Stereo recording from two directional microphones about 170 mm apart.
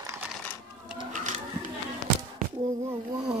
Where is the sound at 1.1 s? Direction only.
45° right (ahead or behind).